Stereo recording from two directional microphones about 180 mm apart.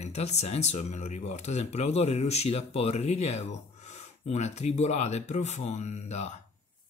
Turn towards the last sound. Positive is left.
turn(degrees=40)  # may be behind; listen again after turning